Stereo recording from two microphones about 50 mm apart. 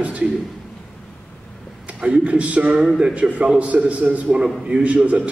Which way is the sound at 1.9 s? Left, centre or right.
Right.